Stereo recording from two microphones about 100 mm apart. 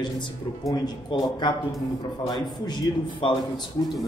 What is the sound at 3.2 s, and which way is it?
Speech, 55° left (ahead or behind).